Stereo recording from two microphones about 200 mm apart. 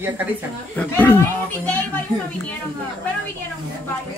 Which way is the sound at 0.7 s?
10° left (ahead or behind).